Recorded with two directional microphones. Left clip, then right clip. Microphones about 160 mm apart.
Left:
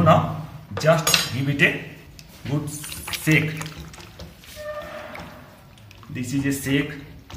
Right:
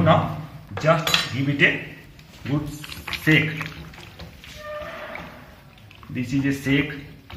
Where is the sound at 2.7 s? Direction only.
20° left (ahead or behind).